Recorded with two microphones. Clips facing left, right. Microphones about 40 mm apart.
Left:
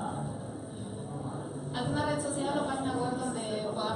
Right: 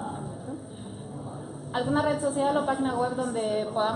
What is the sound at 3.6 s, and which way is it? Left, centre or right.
Speech, right.